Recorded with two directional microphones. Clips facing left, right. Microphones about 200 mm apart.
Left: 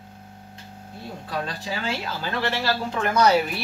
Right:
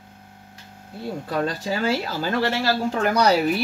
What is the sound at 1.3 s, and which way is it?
Speech, 40° right (ahead or behind).